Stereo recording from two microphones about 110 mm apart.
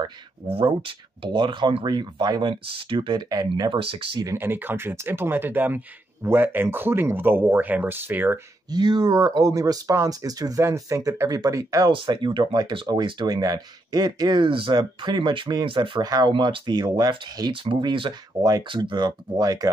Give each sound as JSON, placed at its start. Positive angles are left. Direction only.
{"t": 0.5, "sound": "speech", "side_deg": -55}
{"t": 2.5, "sound": "speech", "side_deg": -55}
{"t": 4.4, "sound": "speech", "side_deg": -20}
{"t": 8.6, "sound": "speech", "side_deg": -40}
{"t": 11.9, "sound": "speech", "side_deg": -45}